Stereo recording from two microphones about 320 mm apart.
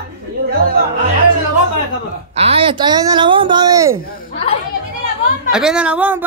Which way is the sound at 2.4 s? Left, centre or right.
Centre.